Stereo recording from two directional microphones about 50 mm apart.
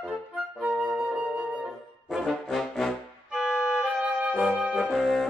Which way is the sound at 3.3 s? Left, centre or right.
Centre.